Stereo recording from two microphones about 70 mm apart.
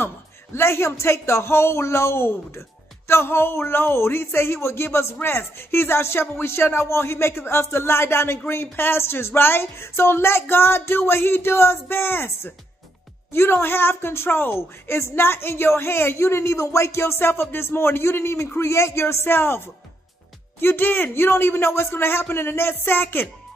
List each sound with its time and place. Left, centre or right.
0.6 s a woman's voice: left